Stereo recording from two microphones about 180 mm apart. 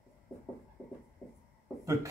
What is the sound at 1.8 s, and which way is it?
Speech, 15° right (ahead or behind).